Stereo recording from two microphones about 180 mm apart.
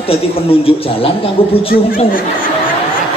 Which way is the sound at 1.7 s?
50° left (ahead or behind).